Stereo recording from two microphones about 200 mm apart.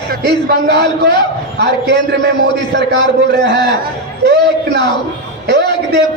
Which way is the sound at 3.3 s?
55° right (ahead or behind).